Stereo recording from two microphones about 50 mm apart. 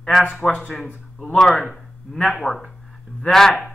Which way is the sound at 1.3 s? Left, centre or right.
Centre.